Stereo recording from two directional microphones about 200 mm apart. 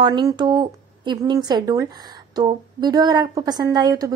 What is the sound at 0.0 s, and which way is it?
A woman's voice, 20° right (ahead or behind).